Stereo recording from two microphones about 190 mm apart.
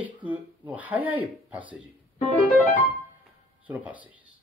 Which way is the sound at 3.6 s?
10° right (ahead or behind).